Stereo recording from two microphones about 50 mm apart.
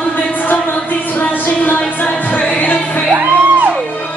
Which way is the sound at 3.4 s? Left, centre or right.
Right.